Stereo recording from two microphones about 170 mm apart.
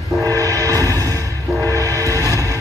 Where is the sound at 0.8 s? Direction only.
20° right (ahead or behind).